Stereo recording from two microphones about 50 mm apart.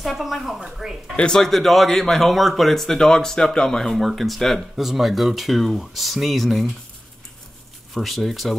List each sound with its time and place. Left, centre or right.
0.0 s speech: centre
1.1 s speech: centre
1.4 s speech: centre
7.9 s speech: centre